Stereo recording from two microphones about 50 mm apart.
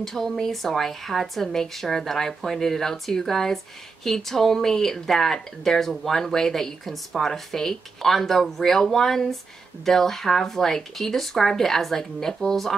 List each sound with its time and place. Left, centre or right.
0.0 s speech: centre